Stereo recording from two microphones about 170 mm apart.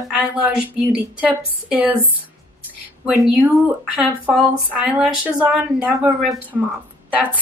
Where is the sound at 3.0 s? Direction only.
Centre (ahead or behind).